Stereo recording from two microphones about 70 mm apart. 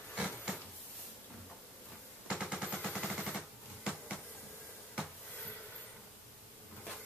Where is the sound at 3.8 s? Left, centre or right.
Centre.